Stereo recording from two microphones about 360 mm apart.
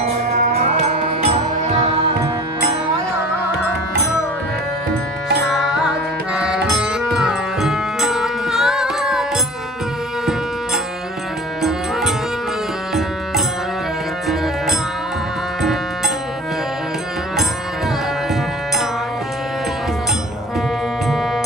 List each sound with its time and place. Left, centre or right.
0.4 s music: right
5.5 s music: centre
12.9 s music: centre
15.6 s music: centre